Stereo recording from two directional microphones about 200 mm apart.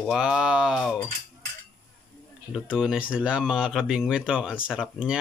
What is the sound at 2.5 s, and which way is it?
Speech, 5° right (ahead or behind).